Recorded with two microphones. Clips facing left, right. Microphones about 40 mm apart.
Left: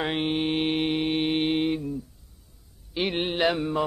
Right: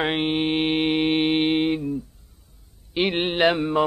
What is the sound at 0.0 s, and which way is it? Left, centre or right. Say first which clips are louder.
Mantra: right 3 dB; right.